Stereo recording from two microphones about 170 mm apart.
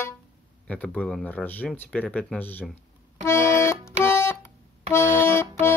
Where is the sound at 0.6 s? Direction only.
10° left (ahead or behind).